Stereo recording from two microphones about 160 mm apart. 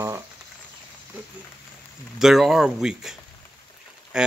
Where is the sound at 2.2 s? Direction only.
5° right (ahead or behind).